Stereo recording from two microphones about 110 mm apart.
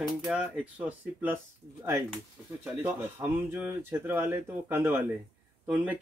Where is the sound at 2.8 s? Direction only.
15° right (ahead or behind).